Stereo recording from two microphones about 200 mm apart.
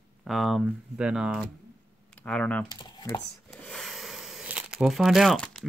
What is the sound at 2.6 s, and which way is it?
Speech, 20° left (ahead or behind).